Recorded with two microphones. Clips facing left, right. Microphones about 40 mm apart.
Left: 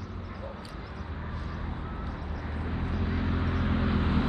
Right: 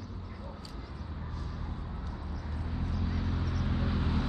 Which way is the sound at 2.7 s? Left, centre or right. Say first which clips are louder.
Left 4 dB; left.